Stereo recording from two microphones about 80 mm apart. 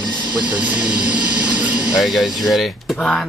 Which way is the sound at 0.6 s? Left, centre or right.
Centre.